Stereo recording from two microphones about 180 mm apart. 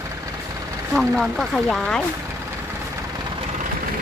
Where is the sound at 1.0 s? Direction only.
Centre (ahead or behind).